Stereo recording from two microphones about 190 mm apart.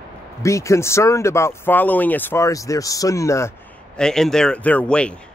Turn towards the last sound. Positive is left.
turn(degrees=5)  # may be behind; listen again after turning